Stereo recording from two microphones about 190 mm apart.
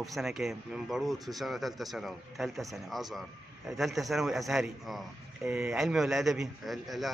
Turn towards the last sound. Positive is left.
turn(degrees=0)  # may be behind; listen again after turning